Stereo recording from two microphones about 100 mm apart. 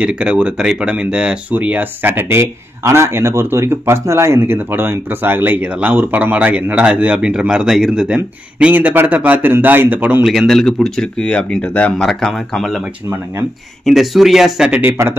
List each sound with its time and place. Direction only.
0.0 s speech: 10° right (ahead or behind)
10.2 s speech: centre (ahead or behind)
13.8 s speech: centre (ahead or behind)
14.7 s speech: 20° right (ahead or behind)